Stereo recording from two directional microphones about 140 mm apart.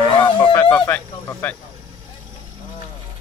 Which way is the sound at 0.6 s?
15° left (ahead or behind).